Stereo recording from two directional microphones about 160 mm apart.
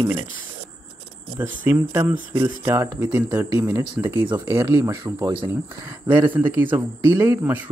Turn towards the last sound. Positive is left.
turn(degrees=-10)  # may be behind; listen again after turning